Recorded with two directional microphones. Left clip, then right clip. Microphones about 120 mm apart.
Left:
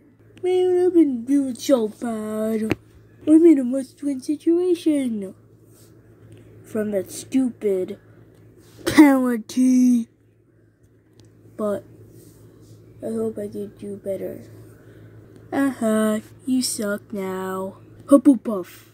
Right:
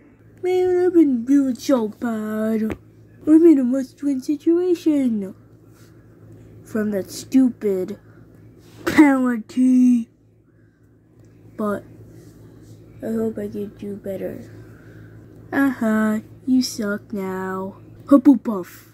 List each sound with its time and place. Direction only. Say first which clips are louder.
0.4 s speech: even; 5° left (ahead or behind)
6.7 s a woman's voice: even; 5° left (ahead or behind)
8.8 s speech: left 1 dB; 40° left (ahead or behind)
13.0 s speech: right 1 dB; 15° left (ahead or behind)
15.5 s speech: right 1 dB; 20° left (ahead or behind)